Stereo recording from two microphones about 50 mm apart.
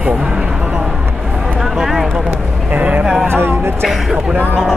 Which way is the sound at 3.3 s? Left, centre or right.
Right.